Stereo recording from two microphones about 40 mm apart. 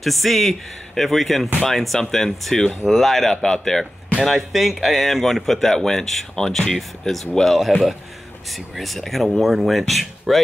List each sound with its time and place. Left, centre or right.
0.0 s speech: centre
4.2 s speech: centre
8.7 s speech: centre